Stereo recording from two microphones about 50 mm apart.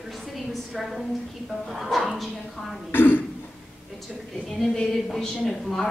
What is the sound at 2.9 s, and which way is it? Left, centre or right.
Speech, left.